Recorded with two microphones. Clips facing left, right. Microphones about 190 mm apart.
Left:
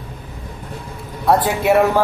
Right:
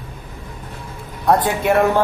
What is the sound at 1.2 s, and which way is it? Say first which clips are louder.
Speech: left 1 dB; centre (ahead or behind).